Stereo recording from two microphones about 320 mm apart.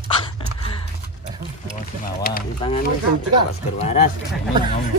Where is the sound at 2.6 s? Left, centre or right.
Centre.